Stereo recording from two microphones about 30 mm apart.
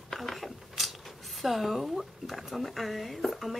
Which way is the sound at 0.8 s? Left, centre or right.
Centre.